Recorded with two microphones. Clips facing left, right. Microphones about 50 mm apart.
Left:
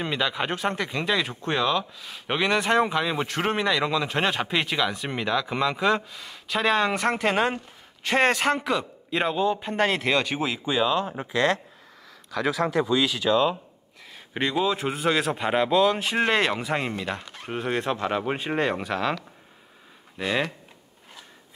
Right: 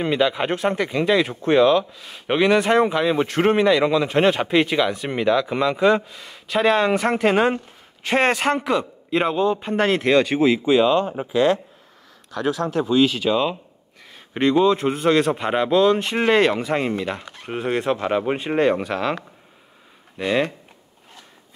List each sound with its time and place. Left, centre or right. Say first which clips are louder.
0.0 s speech: right 6 dB; centre
12.8 s speech: right 5 dB; centre
14.1 s speech: right 8 dB; centre
20.2 s speech: right 5 dB; centre